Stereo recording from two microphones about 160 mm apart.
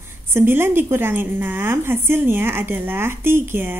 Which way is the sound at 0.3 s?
15° right (ahead or behind).